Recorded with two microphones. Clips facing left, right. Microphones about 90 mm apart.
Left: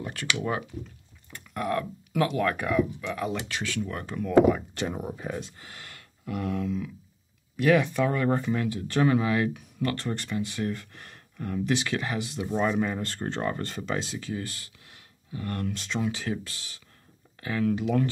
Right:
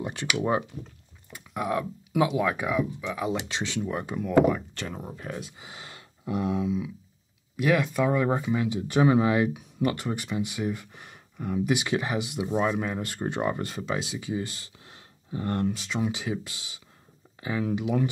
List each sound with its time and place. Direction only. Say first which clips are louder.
0.0 s speech: right 2 dB; 20° right (ahead or behind)
1.3 s speech: even; 15° right (ahead or behind)
3.4 s speech: right 1 dB; 20° right (ahead or behind)
4.6 s speech: left 4 dB; 15° left (ahead or behind)
5.4 s speech: right 1 dB; 15° right (ahead or behind)
12.5 s speech: left 1 dB; 5° right (ahead or behind); by 15.7 s 25° right (ahead or behind)
15.7 s speech: even; 5° right (ahead or behind)
16.0 s speech: even; 15° right (ahead or behind)